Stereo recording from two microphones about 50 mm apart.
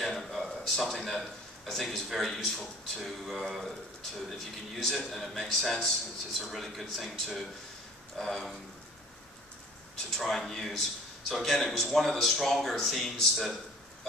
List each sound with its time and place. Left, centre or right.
0.0 s a man's voice: centre
8.2 s speech: centre
10.1 s a man's voice: centre